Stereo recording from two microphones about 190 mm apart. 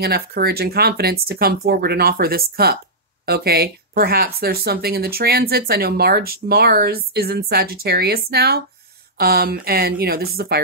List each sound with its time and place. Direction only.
0.0 s speech: 55° right (ahead or behind)